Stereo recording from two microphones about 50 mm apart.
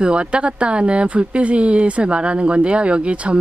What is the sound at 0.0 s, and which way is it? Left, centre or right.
Speech, right.